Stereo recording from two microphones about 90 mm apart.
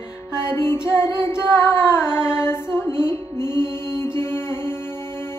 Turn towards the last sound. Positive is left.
turn(degrees=25)  # may be behind; listen again after turning